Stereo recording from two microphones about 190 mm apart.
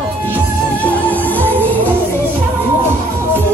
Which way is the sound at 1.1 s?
10° left (ahead or behind).